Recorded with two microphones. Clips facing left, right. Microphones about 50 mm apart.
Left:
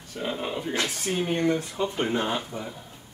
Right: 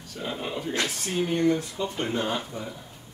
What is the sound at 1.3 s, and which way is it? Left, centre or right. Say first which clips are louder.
Speech: right 2 dB; left.